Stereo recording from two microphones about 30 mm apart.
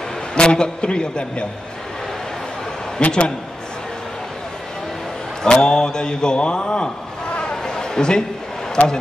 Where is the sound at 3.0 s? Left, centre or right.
Left.